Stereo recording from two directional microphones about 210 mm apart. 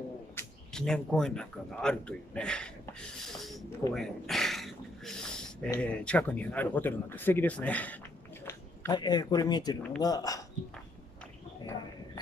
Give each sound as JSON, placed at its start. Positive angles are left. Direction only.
{"t": 0.4, "sound": "speech", "side_deg": 5}
{"t": 3.9, "sound": "a sound", "side_deg": 0}
{"t": 5.7, "sound": "speech", "side_deg": 5}